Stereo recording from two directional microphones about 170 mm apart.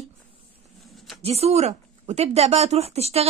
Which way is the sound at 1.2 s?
40° right (ahead or behind).